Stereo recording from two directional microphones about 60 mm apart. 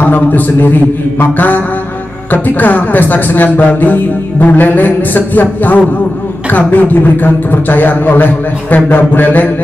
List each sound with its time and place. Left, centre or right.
0.0 s speech: left